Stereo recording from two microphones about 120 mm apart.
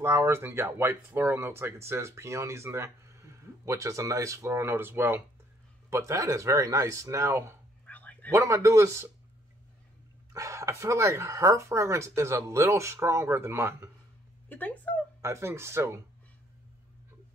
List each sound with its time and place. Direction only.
0.0 s speech: 20° right (ahead or behind)
7.8 s whispering: 10° left (ahead or behind)
8.3 s speech: 25° right (ahead or behind)
10.3 s speech: 25° right (ahead or behind)
14.5 s a sound: 15° left (ahead or behind)
15.2 s speech: 20° right (ahead or behind)